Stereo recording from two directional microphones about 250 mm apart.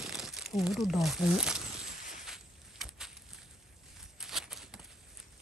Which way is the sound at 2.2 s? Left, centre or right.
Centre.